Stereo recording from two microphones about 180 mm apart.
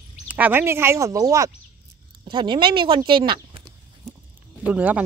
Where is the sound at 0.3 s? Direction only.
10° right (ahead or behind); by 3.6 s 25° right (ahead or behind).